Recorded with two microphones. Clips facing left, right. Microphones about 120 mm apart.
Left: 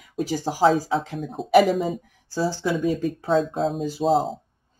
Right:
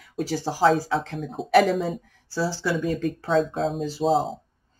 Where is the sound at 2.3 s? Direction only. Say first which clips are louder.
Left 2 dB; 50° left (ahead or behind).